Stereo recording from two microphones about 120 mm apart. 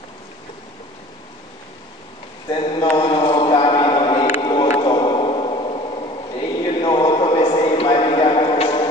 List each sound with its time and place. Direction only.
2.5 s speech: 45° left (ahead or behind)
3.0 s mantra: 45° left (ahead or behind)
4.4 s music: 40° left (ahead or behind)
4.8 s a sound: 40° left (ahead or behind)